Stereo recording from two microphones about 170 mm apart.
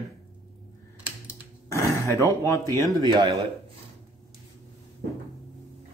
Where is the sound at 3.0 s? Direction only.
25° right (ahead or behind).